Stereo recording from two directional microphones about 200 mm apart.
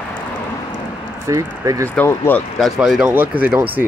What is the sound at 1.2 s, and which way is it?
Speech, 15° right (ahead or behind).